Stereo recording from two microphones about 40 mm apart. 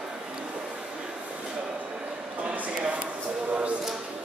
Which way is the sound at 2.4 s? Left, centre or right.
Right.